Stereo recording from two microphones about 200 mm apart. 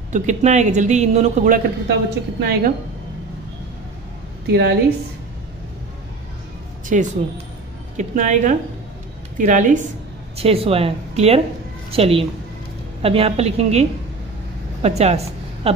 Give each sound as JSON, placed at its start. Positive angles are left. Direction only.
{"t": 0.1, "sound": "speech", "side_deg": -35}
{"t": 1.9, "sound": "a woman's voice", "side_deg": -55}
{"t": 4.5, "sound": "a woman's voice", "side_deg": -55}
{"t": 6.9, "sound": "a woman's voice", "side_deg": -40}